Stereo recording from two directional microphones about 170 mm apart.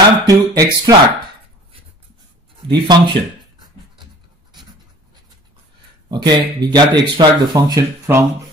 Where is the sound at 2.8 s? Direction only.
25° right (ahead or behind).